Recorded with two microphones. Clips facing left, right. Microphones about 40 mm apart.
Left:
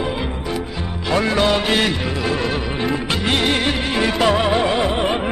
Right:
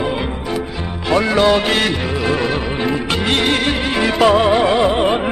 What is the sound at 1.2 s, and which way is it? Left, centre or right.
Music, centre.